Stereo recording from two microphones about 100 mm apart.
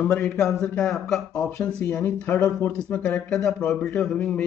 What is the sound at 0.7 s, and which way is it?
Speech, centre (ahead or behind).